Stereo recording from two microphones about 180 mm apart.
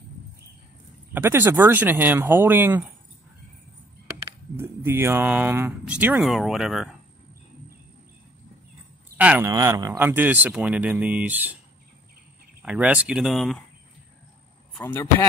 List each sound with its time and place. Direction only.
1.1 s speech: 10° right (ahead or behind)
4.6 s speech: 15° right (ahead or behind)
9.1 s speech: 10° right (ahead or behind)
12.6 s speech: 5° right (ahead or behind)
14.8 s speech: 15° left (ahead or behind)